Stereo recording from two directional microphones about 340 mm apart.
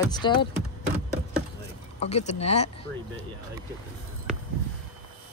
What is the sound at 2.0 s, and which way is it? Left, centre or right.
Speech, centre.